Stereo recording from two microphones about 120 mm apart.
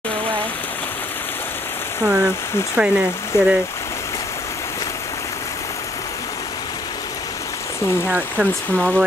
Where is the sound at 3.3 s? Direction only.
20° left (ahead or behind).